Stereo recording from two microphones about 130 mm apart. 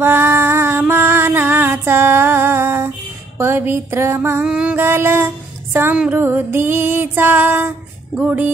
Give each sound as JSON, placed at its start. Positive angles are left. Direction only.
{"t": 0.0, "sound": "music", "side_deg": -20}
{"t": 3.3, "sound": "a sound", "side_deg": -20}
{"t": 4.5, "sound": "female singing", "side_deg": -10}
{"t": 8.2, "sound": "music", "side_deg": -10}